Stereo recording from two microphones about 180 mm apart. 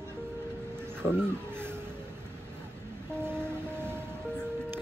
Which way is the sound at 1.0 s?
10° right (ahead or behind).